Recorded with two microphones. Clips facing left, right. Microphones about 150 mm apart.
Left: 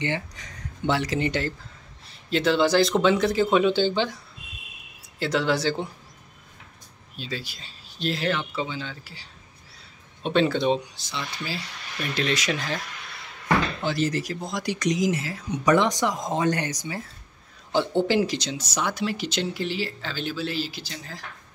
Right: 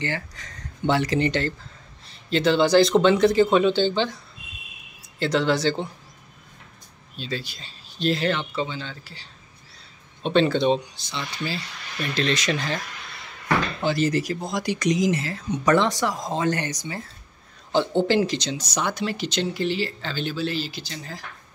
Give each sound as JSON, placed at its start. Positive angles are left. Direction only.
{"t": 0.0, "sound": "speech", "side_deg": 15}
{"t": 0.8, "sound": "speech", "side_deg": 5}
{"t": 5.2, "sound": "speech", "side_deg": 5}
{"t": 7.2, "sound": "speech", "side_deg": 5}
{"t": 13.8, "sound": "speech", "side_deg": 0}